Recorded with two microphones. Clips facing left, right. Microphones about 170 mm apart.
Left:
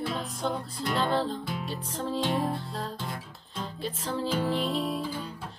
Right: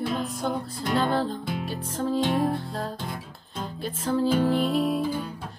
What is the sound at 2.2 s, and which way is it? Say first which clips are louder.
Music: right 4 dB; 15° right (ahead or behind).